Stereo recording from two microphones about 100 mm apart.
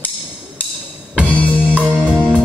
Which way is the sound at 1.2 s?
15° left (ahead or behind).